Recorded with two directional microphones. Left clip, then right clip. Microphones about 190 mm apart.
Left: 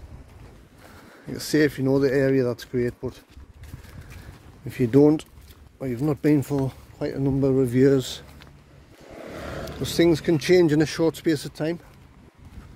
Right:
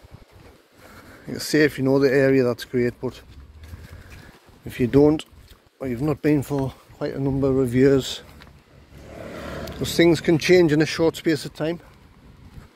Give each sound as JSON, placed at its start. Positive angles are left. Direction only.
{"t": 1.3, "sound": "speech", "side_deg": 15}
{"t": 4.6, "sound": "speech", "side_deg": 20}
{"t": 9.4, "sound": "vehicle", "side_deg": -40}
{"t": 9.9, "sound": "speech", "side_deg": 5}
{"t": 10.6, "sound": "speech", "side_deg": 20}